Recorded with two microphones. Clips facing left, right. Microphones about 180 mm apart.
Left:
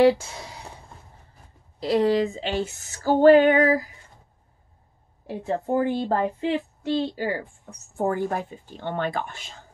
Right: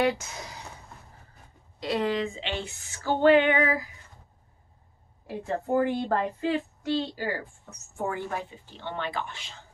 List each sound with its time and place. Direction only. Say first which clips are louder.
0.0 s speech: left 8 dB; 30° left (ahead or behind)
1.8 s female singing: left 7 dB; 35° left (ahead or behind)
5.2 s speech: left 4 dB; 30° left (ahead or behind)
8.0 s a woman's voice: left 6 dB; 45° left (ahead or behind)